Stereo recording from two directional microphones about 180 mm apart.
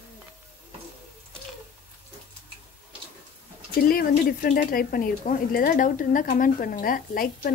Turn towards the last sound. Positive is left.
turn(degrees=55)  # may be behind; listen again after turning